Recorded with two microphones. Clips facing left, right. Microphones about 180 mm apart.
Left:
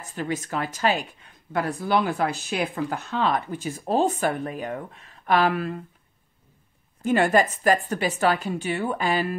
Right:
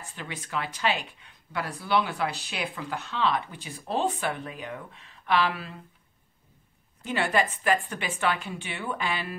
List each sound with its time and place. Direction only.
0.1 s speech: 45° left (ahead or behind)
7.0 s speech: 45° left (ahead or behind)